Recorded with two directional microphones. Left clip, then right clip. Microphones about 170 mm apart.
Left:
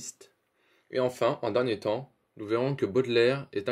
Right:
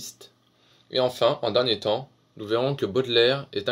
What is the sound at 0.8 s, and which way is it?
Speech, 25° left (ahead or behind).